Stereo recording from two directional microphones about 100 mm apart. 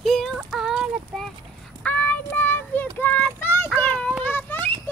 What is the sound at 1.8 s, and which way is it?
Child singing, 15° left (ahead or behind).